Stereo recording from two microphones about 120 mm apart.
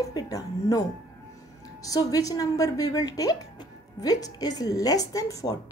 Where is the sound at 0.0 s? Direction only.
35° left (ahead or behind).